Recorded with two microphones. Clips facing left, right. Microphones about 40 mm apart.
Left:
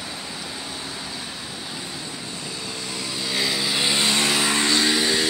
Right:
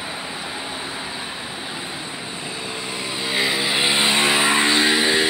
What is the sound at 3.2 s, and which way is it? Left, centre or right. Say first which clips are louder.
Vehicle: right 4 dB; right.